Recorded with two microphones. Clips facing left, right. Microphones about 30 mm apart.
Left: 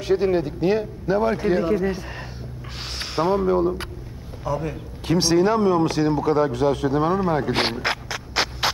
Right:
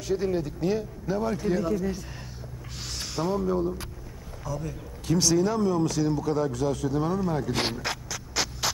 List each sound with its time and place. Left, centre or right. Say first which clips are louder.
0.0 s a man's voice: left 7 dB; left